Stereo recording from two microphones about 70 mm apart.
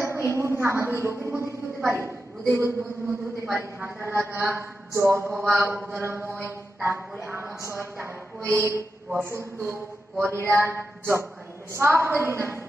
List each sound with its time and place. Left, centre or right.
0.0 s a woman's voice: right